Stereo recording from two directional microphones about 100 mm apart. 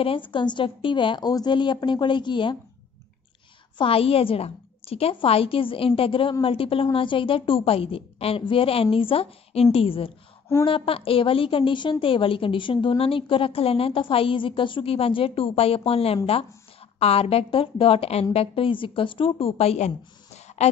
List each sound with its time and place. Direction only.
0.0 s a woman's voice: 60° left (ahead or behind)
3.7 s a woman's voice: 70° left (ahead or behind); by 5.1 s 85° left
5.1 s a woman's voice: 70° left (ahead or behind)
20.4 s a sound: 90° left